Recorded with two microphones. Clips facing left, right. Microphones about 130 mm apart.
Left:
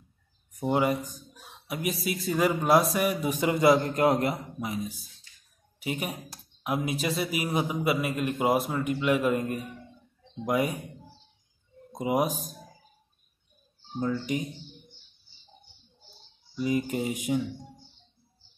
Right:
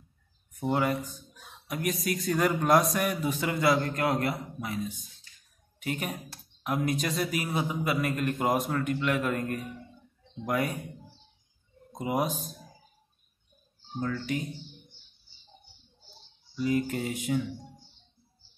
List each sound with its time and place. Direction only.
0.6 s speech: 15° left (ahead or behind)
11.9 s speech: 15° left (ahead or behind)
13.9 s speech: 15° left (ahead or behind)
16.5 s speech: 15° left (ahead or behind)